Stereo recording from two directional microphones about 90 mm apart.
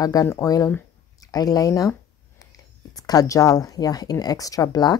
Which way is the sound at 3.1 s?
40° left (ahead or behind).